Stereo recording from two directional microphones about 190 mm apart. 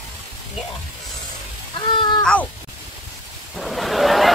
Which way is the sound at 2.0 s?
25° left (ahead or behind).